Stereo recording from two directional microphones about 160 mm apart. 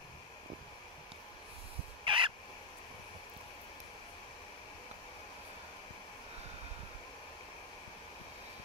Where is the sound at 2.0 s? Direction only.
30° right (ahead or behind).